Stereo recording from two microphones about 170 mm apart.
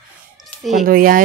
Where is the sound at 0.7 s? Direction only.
50° right (ahead or behind).